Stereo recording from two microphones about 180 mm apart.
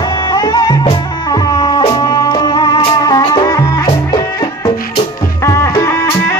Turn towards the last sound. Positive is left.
turn(degrees=15)  # may be behind; listen again after turning